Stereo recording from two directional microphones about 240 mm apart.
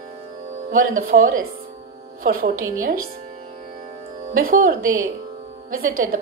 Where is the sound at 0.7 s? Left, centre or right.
Right.